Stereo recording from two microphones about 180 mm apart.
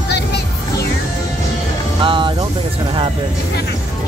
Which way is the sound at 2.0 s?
25° right (ahead or behind).